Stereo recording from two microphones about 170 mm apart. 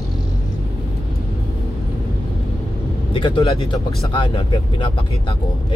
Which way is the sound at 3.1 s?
30° left (ahead or behind).